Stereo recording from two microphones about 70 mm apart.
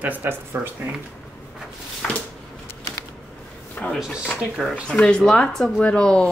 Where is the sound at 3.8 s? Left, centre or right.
Left.